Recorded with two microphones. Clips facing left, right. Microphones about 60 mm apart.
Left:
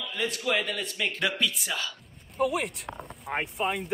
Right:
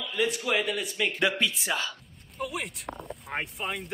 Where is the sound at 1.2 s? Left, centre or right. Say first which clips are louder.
Right 2 dB; right.